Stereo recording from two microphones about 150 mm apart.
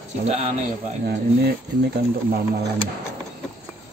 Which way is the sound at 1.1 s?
90° right.